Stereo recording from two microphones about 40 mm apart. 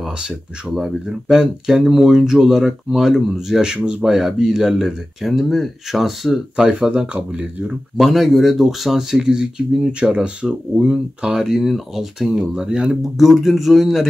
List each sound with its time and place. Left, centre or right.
0.7 s speech: centre
1.4 s speech: centre
3.7 s speech: right
4.0 s speech: centre
6.8 s speech: right
8.0 s speech: centre
9.2 s speech: centre
11.4 s speech: centre
13.0 s speech: centre